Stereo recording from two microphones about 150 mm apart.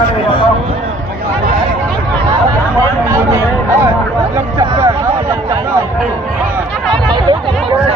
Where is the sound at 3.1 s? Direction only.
20° right (ahead or behind).